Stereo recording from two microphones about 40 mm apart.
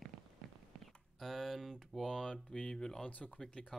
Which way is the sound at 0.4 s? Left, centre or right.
Centre.